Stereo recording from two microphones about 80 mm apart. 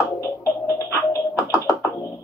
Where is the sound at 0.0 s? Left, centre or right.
Left.